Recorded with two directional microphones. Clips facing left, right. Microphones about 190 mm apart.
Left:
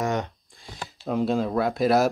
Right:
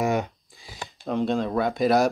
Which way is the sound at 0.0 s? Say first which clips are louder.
Right 2 dB; 10° right (ahead or behind).